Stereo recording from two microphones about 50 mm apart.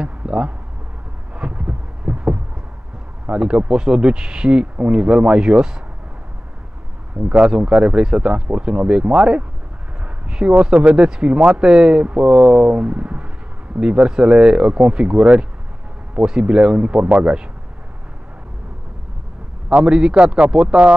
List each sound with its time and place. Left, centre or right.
0.0 s a sound: centre
1.3 s heart sounds: centre
3.3 s speech: centre
7.3 s speech: centre
10.0 s a sound: centre
10.5 s speech: right
19.7 s speech: right